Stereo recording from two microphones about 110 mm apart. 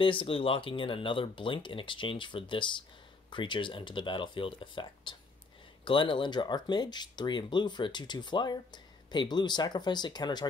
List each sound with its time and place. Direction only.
0.0 s speech: 50° left (ahead or behind)